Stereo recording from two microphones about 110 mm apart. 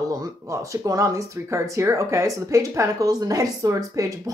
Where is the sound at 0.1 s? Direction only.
30° right (ahead or behind).